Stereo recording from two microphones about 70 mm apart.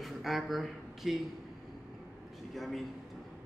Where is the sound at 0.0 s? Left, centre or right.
Centre.